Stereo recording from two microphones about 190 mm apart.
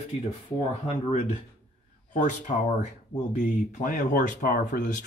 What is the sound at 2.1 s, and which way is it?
Speech, 40° left (ahead or behind).